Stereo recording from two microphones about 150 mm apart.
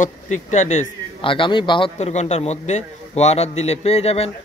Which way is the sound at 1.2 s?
35° left (ahead or behind).